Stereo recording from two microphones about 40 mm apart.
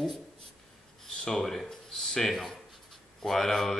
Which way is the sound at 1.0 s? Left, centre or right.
Centre.